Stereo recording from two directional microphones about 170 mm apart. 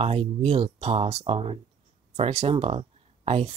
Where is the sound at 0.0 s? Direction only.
35° right (ahead or behind).